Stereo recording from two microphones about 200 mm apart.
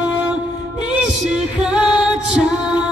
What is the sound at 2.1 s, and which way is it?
Music, 5° right (ahead or behind).